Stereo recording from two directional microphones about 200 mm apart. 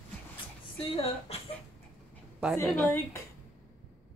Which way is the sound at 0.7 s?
30° left (ahead or behind).